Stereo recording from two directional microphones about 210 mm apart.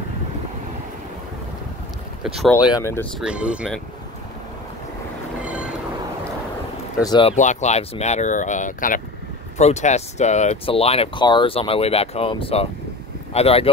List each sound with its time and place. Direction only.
2.2 s speech: centre (ahead or behind)
2.5 s speech: 15° left (ahead or behind)
3.2 s speech: 5° right (ahead or behind)
5.4 s train: 5° right (ahead or behind)
7.0 s speech: 20° left (ahead or behind)
7.3 s speech: 35° left (ahead or behind)